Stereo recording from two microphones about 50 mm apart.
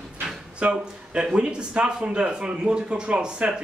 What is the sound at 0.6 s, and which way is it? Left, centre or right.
Speech, centre.